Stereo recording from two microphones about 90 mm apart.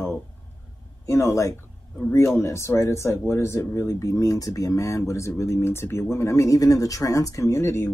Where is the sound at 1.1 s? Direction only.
30° left (ahead or behind).